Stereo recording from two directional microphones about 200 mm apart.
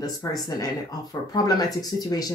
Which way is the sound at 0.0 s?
20° left (ahead or behind).